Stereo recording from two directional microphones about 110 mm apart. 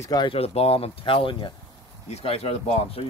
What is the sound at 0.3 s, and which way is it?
Speech, 60° left (ahead or behind).